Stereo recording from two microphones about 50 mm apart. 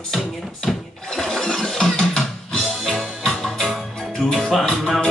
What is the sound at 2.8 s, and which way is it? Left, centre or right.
Music, centre.